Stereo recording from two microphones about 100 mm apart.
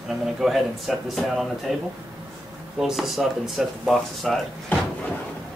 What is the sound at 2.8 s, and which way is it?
Speech, 5° right (ahead or behind).